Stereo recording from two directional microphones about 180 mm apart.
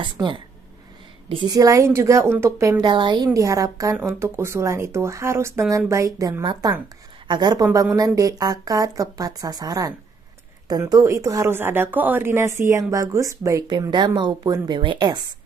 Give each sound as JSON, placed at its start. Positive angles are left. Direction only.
{"t": 0.0, "sound": "a woman's voice", "side_deg": -25}